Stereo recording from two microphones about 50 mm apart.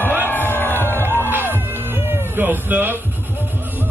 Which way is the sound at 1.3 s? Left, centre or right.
Right.